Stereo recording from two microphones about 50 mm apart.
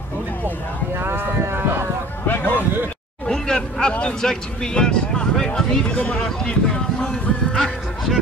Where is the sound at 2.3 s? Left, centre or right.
Left.